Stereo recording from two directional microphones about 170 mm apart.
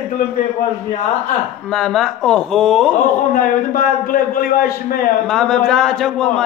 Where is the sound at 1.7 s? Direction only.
Centre (ahead or behind).